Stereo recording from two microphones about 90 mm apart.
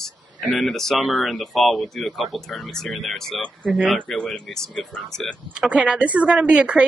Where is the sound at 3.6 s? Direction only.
15° right (ahead or behind).